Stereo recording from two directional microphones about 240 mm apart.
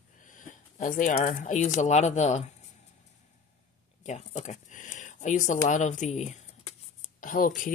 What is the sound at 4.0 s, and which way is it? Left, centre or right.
Speech, left.